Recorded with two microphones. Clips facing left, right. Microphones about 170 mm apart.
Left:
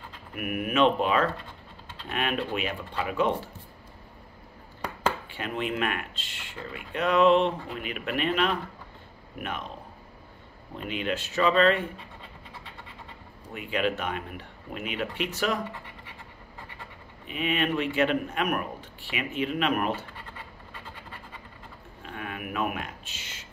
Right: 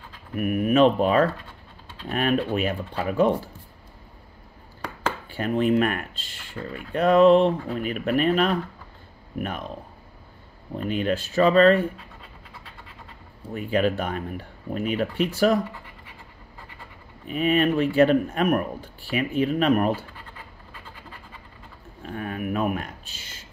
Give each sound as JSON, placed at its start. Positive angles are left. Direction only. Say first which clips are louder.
{"t": 0.4, "sound": "speech", "louder": "right 6 dB", "side_deg": -35}
{"t": 5.3, "sound": "speech", "louder": "right 9 dB", "side_deg": -40}
{"t": 10.8, "sound": "speech", "louder": "right 6 dB", "side_deg": -40}
{"t": 13.5, "sound": "speech", "louder": "right 5 dB", "side_deg": -40}
{"t": 17.3, "sound": "speech", "louder": "right 7 dB", "side_deg": -40}
{"t": 22.0, "sound": "speech", "louder": "right 7 dB", "side_deg": -40}